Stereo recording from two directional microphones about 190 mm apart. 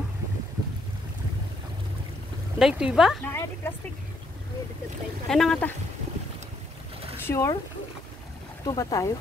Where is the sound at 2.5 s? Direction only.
5° right (ahead or behind).